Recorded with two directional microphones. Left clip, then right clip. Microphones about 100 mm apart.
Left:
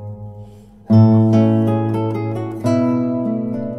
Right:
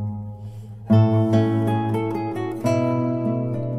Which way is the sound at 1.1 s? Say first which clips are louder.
Left 5 dB; 20° left (ahead or behind).